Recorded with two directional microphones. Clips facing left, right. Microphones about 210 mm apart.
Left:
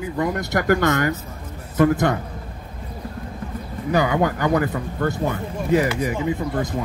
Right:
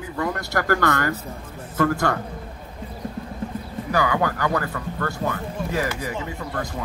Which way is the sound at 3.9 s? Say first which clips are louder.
Left 3 dB; 20° left (ahead or behind).